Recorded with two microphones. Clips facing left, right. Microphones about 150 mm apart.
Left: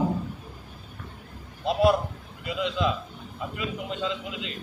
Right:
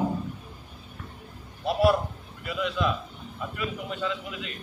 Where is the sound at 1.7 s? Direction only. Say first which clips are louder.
Left 1 dB; 20° left (ahead or behind).